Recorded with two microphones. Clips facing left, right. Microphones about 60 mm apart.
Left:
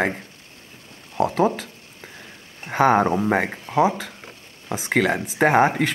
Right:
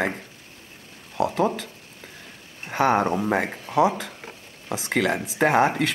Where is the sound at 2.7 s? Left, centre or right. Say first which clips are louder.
Left 3 dB; centre.